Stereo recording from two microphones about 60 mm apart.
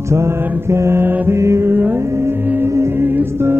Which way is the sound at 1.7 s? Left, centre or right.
Right.